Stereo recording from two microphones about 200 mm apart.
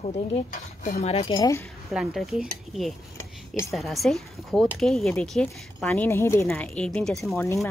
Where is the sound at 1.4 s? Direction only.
15° left (ahead or behind).